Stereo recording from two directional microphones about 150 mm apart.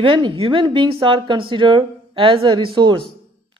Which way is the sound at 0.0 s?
35° right (ahead or behind).